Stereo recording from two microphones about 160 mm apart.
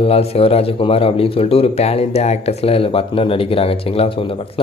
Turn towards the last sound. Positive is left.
turn(degrees=35)  # may be behind; listen again after turning